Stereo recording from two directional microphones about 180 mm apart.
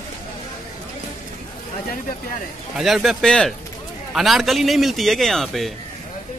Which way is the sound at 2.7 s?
Centre (ahead or behind).